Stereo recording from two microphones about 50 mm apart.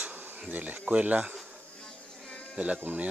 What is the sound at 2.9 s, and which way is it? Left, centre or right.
Speech, right.